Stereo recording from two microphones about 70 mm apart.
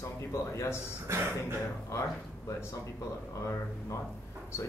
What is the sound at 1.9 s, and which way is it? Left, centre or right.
Speech, left.